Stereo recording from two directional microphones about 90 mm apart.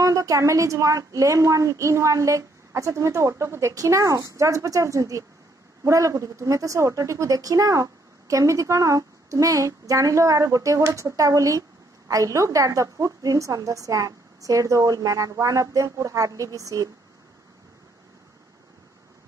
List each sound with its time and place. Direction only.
0.0 s speech: 40° right (ahead or behind)